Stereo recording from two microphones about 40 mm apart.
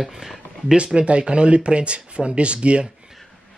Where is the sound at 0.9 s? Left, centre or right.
Right.